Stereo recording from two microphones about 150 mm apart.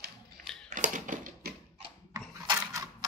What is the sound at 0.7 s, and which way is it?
Typewriter, 60° right (ahead or behind).